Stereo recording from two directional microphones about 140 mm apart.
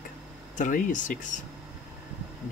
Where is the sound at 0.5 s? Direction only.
65° left (ahead or behind).